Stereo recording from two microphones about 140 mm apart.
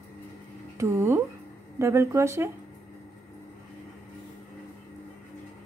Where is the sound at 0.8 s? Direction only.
20° right (ahead or behind).